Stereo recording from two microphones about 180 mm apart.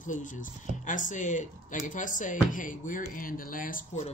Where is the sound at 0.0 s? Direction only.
45° left (ahead or behind).